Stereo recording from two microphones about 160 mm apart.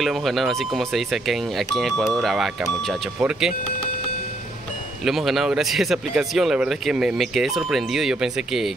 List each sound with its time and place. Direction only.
0.0 s speech: centre (ahead or behind)
5.0 s speech: centre (ahead or behind)